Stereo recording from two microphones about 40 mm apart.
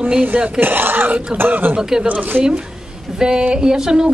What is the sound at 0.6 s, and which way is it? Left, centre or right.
Speech, right.